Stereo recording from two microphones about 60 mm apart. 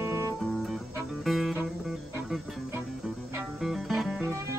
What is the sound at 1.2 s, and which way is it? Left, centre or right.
Music, centre.